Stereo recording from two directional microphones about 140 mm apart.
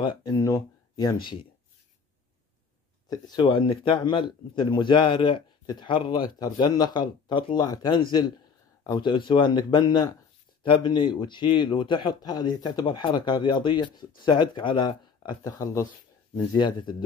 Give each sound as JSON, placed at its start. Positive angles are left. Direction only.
{"t": 0.0, "sound": "speech", "side_deg": 30}
{"t": 3.1, "sound": "a man's voice", "side_deg": 30}